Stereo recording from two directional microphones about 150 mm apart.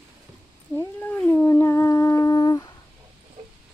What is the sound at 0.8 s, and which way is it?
Cat, 10° left (ahead or behind).